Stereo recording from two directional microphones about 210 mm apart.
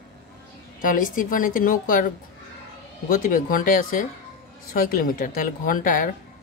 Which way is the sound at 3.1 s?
40° left (ahead or behind).